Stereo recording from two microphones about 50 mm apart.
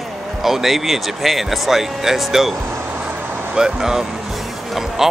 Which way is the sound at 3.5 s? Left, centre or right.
Centre.